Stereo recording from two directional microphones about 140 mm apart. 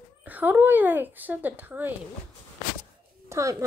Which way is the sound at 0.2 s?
10° right (ahead or behind).